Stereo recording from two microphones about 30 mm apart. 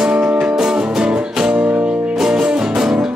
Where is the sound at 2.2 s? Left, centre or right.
Right.